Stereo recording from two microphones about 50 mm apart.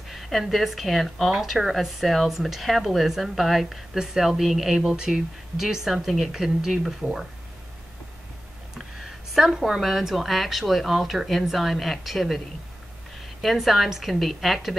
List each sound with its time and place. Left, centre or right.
0.1 s speech: centre
4.8 s speech: centre
9.3 s speech: centre
13.4 s speech: centre